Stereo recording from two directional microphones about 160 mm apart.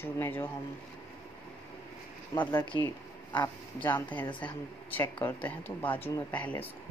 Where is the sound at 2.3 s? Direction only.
10° left (ahead or behind).